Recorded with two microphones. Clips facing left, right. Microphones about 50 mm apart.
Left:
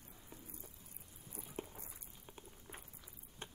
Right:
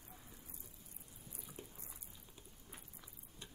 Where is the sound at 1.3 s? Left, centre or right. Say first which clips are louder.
Left 7 dB; left.